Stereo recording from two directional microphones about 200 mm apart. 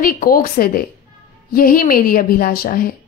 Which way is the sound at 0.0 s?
45° left (ahead or behind).